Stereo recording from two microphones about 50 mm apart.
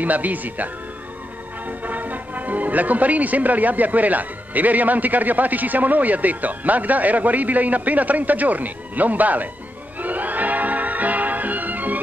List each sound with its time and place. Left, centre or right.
0.0 s speech: right
1.7 s speech: right
9.9 s music: right